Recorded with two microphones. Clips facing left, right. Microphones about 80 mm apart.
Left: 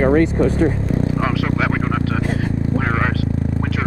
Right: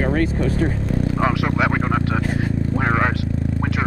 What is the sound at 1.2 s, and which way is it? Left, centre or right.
Vehicle, centre.